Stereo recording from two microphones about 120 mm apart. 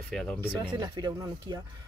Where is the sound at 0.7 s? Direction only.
35° right (ahead or behind).